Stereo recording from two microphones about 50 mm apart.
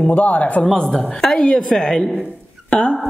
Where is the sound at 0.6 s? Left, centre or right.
Centre.